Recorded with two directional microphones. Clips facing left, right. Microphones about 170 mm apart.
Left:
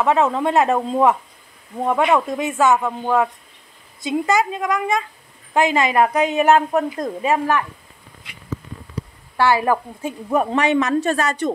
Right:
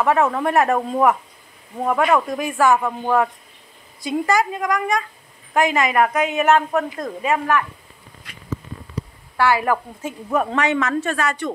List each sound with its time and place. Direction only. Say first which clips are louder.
0.0 s a woman's voice: left 1 dB; 20° left (ahead or behind)
4.0 s a woman's voice: left 1 dB; 20° left (ahead or behind)
6.7 s a woman's voice: left 2 dB; 20° left (ahead or behind)
7.2 s a woman's voice: even; 30° left (ahead or behind)
9.4 s a woman's voice: left 1 dB; 25° left (ahead or behind)
10.0 s a woman's voice: left 2 dB; 15° left (ahead or behind)
11.0 s a woman's voice: left 3 dB; 40° left (ahead or behind)